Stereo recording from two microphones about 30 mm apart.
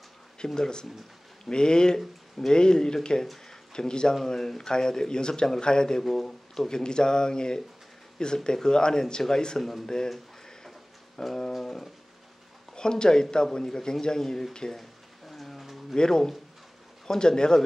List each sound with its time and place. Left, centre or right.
0.6 s speech: left
2.0 s speech: centre
2.5 s speech: left
3.4 s a sound: left
4.1 s speech: centre
5.9 s speech: centre
9.6 s speech: centre
11.2 s a sound: centre
12.7 s speech: left
14.8 s a sound: centre
16.0 s speech: centre